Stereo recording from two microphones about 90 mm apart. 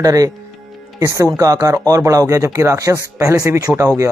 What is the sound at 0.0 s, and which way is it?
Speech, 40° right (ahead or behind).